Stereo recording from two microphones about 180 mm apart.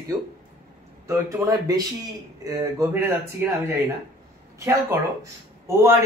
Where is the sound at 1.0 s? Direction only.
15° right (ahead or behind).